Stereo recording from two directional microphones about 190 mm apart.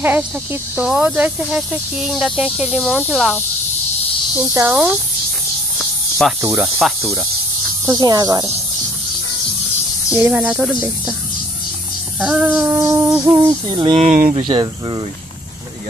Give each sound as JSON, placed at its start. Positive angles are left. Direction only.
{"t": 0.0, "sound": "speech", "side_deg": -10}
{"t": 4.6, "sound": "speech", "side_deg": -10}
{"t": 6.4, "sound": "speech", "side_deg": -10}
{"t": 7.8, "sound": "music", "side_deg": -20}
{"t": 10.1, "sound": "speech", "side_deg": -5}
{"t": 12.2, "sound": "speech", "side_deg": -5}
{"t": 13.1, "sound": "music", "side_deg": -15}
{"t": 13.9, "sound": "speech", "side_deg": -40}
{"t": 14.4, "sound": "music", "side_deg": -25}